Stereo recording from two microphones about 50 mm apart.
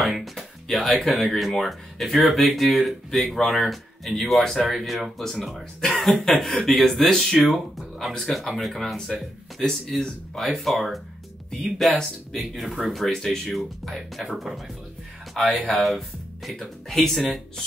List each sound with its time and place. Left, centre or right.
0.0 s speech: centre
7.3 s speech: centre
15.7 s speech: centre